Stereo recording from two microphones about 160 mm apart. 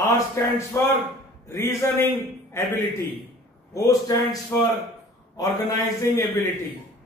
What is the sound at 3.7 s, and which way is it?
A man's voice, 20° left (ahead or behind).